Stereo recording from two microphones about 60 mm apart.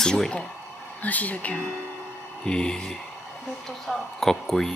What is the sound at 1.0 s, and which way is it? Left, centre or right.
Speech, left.